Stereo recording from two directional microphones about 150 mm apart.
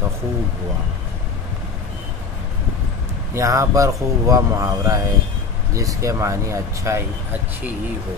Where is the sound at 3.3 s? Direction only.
20° right (ahead or behind).